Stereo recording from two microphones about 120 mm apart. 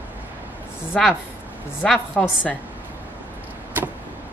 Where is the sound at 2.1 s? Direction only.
Centre (ahead or behind).